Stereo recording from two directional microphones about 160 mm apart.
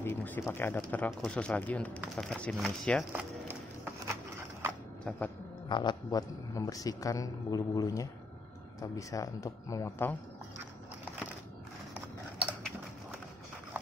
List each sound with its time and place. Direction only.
0.0 s speech: 10° left (ahead or behind)
3.1 s a sound: 10° right (ahead or behind)
5.7 s a man's voice: 30° left (ahead or behind)